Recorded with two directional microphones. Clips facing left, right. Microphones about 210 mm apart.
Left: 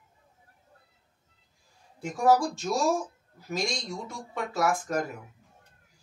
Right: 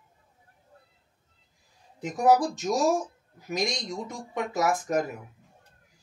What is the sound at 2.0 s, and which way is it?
Speech, 15° right (ahead or behind).